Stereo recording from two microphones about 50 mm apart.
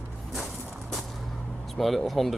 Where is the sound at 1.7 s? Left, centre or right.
Centre.